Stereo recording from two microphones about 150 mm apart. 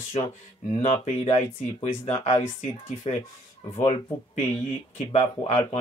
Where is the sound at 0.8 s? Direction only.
40° left (ahead or behind).